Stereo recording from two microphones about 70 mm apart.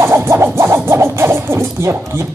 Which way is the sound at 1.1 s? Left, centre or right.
Right.